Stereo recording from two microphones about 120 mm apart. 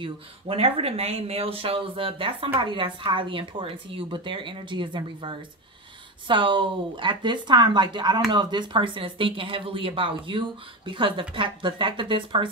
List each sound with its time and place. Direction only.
0.0 s speech: 55° right (ahead or behind)